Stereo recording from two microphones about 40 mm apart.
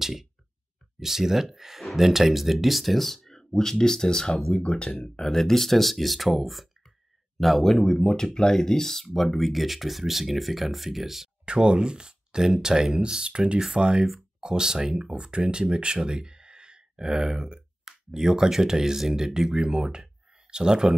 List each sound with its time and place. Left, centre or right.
0.0 s a sound: centre
0.9 s speech: centre
4.6 s speech: left
5.1 s speech: centre
11.4 s speech: right
13.0 s speech: right